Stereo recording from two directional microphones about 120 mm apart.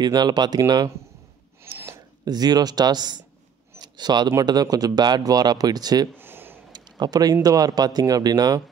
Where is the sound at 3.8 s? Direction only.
35° right (ahead or behind).